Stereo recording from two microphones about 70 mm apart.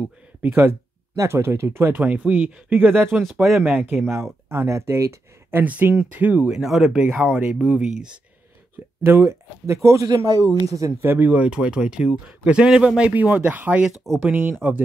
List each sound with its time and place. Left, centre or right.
0.4 s speech: right
1.1 s speech: right
2.0 s speech: right
3.2 s speech: centre
4.1 s speech: right
5.6 s speech: right
6.5 s speech: centre
9.0 s speech: right
10.0 s speech: right
11.0 s speech: right